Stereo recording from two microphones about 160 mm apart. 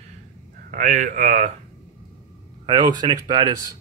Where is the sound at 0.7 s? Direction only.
50° right (ahead or behind).